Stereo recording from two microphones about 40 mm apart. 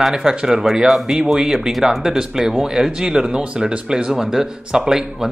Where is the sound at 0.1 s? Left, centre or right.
Centre.